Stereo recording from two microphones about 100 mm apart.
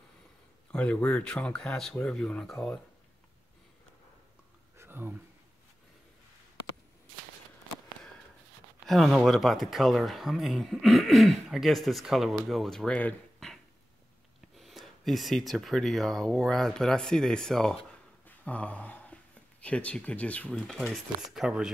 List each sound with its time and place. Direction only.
0.7 s speech: 10° left (ahead or behind)
4.7 s a sound: 20° right (ahead or behind)
8.8 s speech: centre (ahead or behind)
14.6 s speech: centre (ahead or behind)
18.2 s a sound: 15° left (ahead or behind)
19.6 s speech: 10° left (ahead or behind)
21.2 s speech: 5° right (ahead or behind)